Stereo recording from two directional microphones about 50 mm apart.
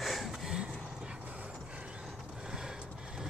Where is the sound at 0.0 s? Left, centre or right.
Centre.